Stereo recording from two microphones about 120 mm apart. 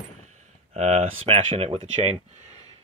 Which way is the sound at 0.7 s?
70° right (ahead or behind).